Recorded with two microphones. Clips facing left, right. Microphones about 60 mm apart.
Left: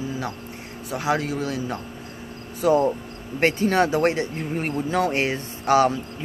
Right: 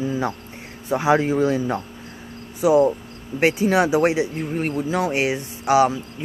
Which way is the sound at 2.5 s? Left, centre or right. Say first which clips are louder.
Right 3 dB; centre.